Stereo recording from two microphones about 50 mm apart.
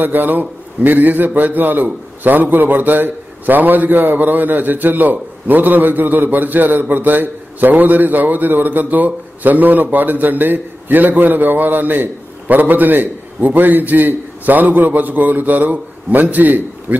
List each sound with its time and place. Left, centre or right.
0.0 s a man's voice: right